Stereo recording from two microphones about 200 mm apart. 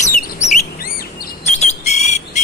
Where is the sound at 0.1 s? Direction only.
45° left (ahead or behind).